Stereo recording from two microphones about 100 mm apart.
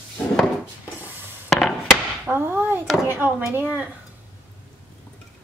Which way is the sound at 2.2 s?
20° right (ahead or behind).